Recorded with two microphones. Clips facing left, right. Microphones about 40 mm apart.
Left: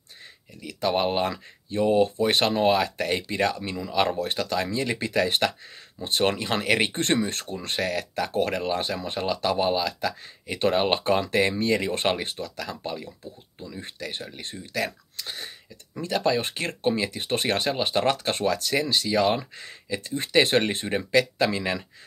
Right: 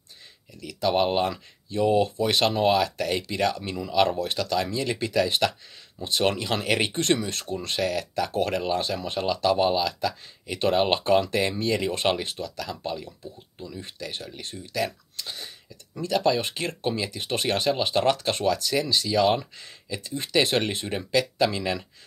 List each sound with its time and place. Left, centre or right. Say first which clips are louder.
0.7 s speech: right 1 dB; left
17.7 s speech: right 1 dB; left
18.2 s speech: right 1 dB; left